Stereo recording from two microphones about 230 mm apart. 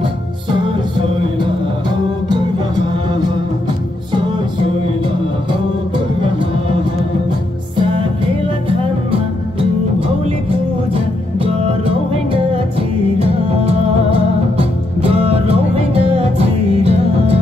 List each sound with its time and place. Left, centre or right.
0.5 s music: right
8.6 s music: right